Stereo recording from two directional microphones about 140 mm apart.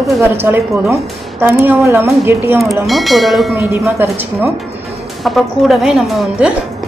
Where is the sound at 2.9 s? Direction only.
Centre (ahead or behind).